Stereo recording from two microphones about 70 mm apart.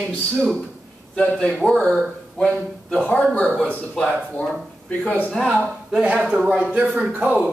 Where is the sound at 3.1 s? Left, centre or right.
Centre.